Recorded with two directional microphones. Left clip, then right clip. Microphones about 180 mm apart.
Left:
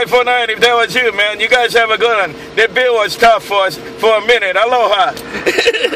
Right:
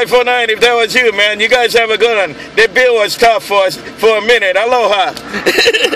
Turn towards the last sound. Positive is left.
turn(degrees=-30)  # may be behind; listen again after turning